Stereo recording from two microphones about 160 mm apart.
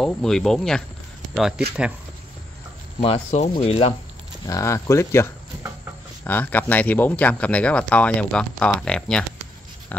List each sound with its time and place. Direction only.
0.0 s speech: 5° left (ahead or behind)
3.0 s speech: 40° left (ahead or behind)
4.5 s speech: 20° left (ahead or behind)